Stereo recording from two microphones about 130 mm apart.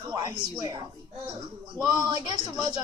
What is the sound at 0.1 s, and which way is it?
Speech, 25° right (ahead or behind).